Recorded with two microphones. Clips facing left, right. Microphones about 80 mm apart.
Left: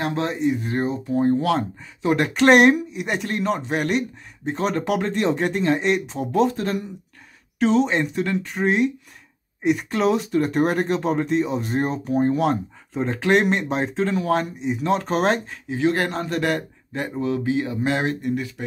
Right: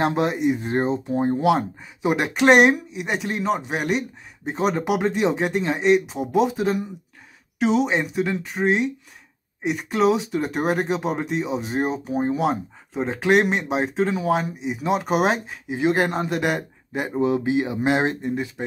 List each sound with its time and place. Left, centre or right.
0.1 s a man's voice: centre